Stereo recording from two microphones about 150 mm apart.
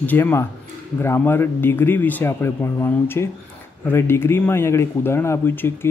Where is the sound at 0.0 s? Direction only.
15° left (ahead or behind).